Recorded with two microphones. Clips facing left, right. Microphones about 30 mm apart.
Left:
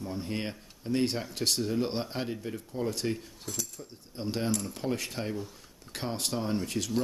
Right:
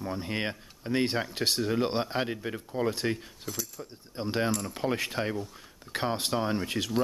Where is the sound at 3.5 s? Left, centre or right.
Centre.